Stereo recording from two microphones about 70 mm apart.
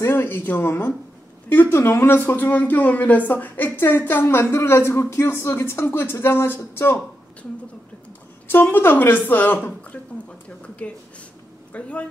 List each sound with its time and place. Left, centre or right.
0.0 s speech: left
8.5 s a woman's voice: left
11.7 s a woman's voice: centre